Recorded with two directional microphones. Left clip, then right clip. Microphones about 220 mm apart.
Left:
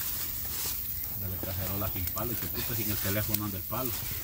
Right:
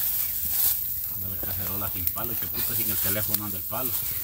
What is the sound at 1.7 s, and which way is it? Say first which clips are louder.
Speech: right 1 dB; 45° right (ahead or behind).